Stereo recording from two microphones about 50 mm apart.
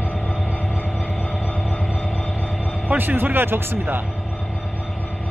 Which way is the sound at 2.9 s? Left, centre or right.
Right.